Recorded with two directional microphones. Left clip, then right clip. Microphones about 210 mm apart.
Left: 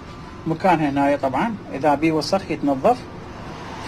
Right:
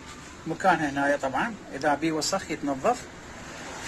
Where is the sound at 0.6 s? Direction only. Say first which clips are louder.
Left 5 dB; centre (ahead or behind).